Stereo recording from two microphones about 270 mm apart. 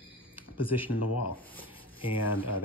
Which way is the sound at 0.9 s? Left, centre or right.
Left.